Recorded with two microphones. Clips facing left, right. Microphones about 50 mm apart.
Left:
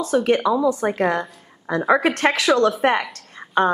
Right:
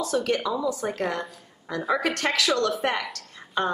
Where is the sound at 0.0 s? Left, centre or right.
Left.